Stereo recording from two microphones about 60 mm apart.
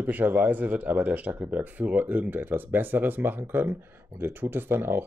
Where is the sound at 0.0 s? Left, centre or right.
Right.